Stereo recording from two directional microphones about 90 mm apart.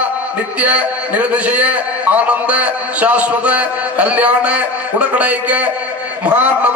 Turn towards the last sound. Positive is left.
turn(degrees=-15)  # may be behind; listen again after turning